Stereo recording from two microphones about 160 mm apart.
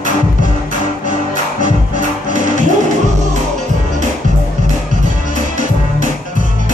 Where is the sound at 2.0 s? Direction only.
50° right (ahead or behind).